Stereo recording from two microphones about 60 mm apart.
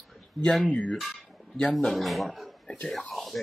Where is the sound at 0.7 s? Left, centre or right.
Left.